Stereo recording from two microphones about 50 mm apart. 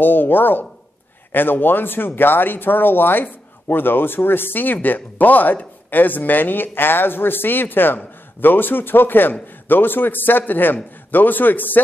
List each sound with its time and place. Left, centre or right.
0.0 s speech: left